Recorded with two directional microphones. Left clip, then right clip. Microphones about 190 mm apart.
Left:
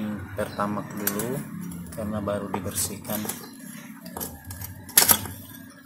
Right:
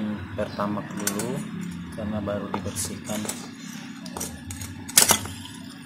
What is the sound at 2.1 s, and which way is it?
Speech, centre (ahead or behind).